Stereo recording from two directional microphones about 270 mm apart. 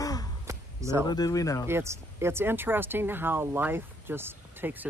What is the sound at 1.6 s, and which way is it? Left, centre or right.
Speech, centre.